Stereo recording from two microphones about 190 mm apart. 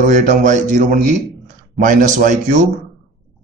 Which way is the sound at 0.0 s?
40° right (ahead or behind).